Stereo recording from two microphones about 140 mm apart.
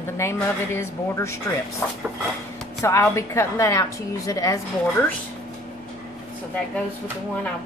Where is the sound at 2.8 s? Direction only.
20° left (ahead or behind).